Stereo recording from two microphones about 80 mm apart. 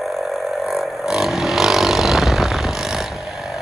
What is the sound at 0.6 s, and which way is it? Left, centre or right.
Vehicle, centre.